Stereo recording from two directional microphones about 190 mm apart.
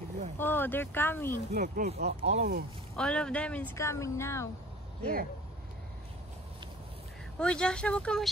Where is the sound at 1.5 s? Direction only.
55° right (ahead or behind).